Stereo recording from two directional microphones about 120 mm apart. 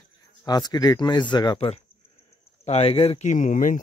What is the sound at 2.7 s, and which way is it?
Speech, 55° left (ahead or behind).